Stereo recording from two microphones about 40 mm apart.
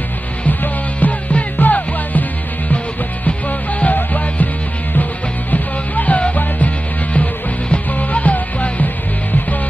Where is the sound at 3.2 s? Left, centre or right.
Left.